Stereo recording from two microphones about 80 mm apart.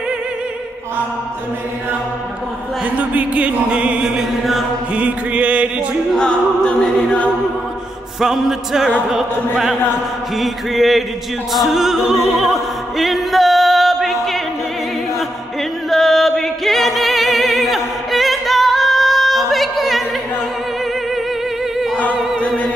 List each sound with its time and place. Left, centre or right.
2.8 s music: centre
6.1 s music: centre
8.2 s a sound: centre
10.3 s a sound: centre
11.5 s opera: centre
15.9 s singing: centre